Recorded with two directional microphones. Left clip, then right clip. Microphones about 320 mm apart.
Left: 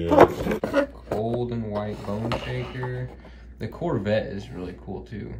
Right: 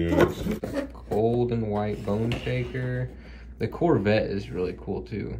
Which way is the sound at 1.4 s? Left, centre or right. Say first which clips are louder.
Right 2 dB; right.